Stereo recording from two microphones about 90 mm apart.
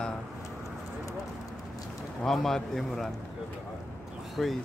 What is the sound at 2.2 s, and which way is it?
Speech, 5° left (ahead or behind).